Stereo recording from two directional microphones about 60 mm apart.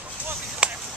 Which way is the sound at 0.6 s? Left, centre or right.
Centre.